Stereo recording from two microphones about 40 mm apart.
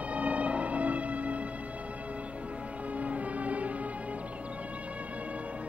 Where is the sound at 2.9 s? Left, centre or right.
Right.